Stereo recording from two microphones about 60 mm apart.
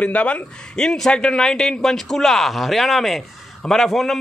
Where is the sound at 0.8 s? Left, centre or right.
Centre.